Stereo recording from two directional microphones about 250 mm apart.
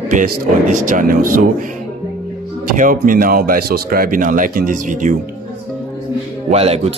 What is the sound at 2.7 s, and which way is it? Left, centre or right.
Speech, right.